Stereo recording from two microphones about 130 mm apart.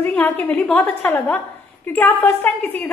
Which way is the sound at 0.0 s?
15° left (ahead or behind).